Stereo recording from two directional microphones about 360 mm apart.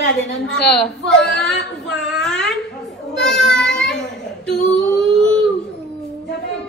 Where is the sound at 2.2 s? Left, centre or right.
Centre.